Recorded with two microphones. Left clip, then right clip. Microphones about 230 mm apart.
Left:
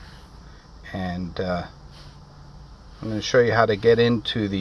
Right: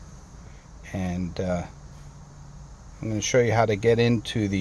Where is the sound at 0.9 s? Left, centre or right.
Centre.